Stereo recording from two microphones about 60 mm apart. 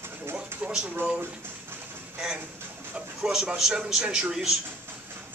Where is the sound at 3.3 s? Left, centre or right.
Centre.